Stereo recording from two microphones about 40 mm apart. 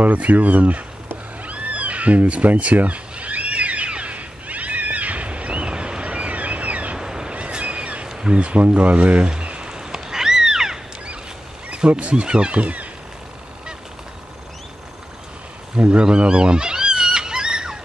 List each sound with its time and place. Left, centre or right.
0.0 s speech: right
1.4 s cat: right
7.0 s vehicle: centre
7.3 s vehicle: right
8.1 s a sound: centre
8.4 s speech: right
9.3 s cat: right
12.1 s speech: right
15.7 s a sound: right